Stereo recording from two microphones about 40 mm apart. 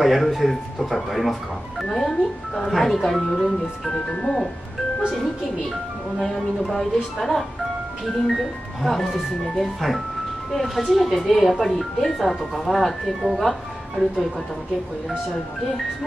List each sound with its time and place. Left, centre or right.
0.0 s speech: centre
4.0 s speech: left
5.1 s a woman's voice: centre